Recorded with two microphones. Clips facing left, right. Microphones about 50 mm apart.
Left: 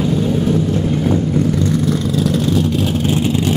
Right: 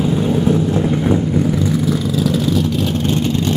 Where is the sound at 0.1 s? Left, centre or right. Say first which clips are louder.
Right 1 dB; centre.